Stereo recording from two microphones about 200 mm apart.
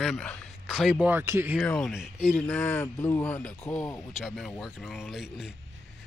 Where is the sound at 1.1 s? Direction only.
10° right (ahead or behind).